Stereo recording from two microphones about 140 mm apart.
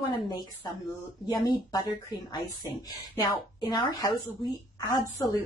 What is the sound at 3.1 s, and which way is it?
A woman's voice, 30° left (ahead or behind).